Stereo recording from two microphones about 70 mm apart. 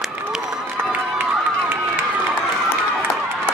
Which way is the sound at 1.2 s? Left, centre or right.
Right.